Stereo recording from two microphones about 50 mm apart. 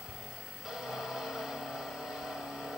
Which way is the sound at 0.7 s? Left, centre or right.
Centre.